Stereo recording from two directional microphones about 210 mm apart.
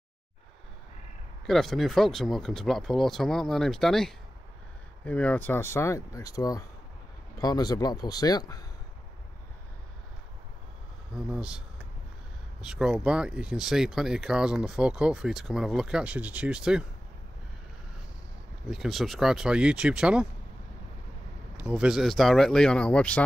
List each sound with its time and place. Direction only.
1.4 s speech: centre (ahead or behind); by 8.6 s 15° left (ahead or behind)
11.1 s speech: 5° right (ahead or behind)
12.6 s speech: 5° right (ahead or behind)
18.7 s speech: centre (ahead or behind)
21.5 s speech: 5° right (ahead or behind)